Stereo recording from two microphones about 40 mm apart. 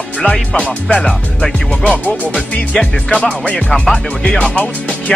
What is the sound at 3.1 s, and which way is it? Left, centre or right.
Music, left.